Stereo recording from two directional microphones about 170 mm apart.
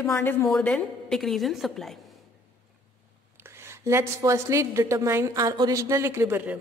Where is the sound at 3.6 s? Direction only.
15° right (ahead or behind).